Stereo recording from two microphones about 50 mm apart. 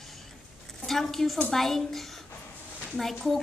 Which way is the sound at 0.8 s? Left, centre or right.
Centre.